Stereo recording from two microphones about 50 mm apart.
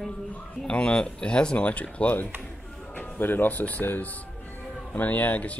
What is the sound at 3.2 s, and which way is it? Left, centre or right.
Speech, left.